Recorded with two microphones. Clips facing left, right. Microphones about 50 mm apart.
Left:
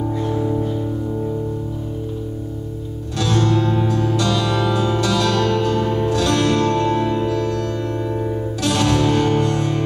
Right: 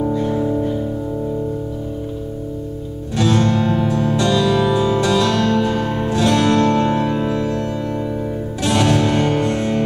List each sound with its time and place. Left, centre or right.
0.2 s music: centre
3.2 s music: right
4.5 s music: centre
8.6 s music: right